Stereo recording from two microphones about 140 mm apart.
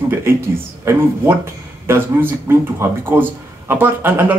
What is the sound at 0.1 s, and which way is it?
Speech, 15° right (ahead or behind).